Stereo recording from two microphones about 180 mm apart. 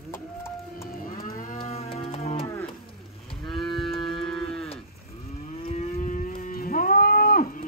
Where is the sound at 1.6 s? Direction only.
35° left (ahead or behind).